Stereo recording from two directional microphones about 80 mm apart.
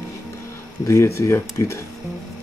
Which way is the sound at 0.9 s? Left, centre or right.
Left.